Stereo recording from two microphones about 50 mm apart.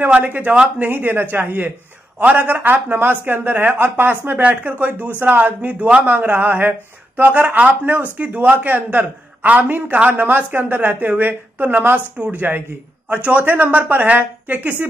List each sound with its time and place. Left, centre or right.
0.1 s a woman's voice: right
4.4 s a woman's voice: right
6.1 s a woman's voice: right